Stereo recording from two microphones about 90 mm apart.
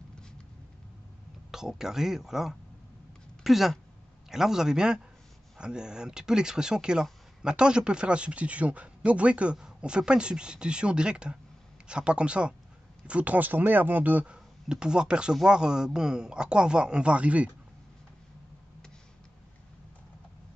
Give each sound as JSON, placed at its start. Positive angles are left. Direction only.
{"t": 1.5, "sound": "speech", "side_deg": -5}